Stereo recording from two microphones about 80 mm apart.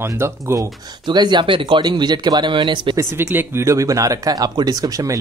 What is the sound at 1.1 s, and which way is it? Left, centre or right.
Speech, right.